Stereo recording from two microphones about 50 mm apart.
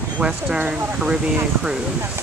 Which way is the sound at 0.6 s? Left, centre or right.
Right.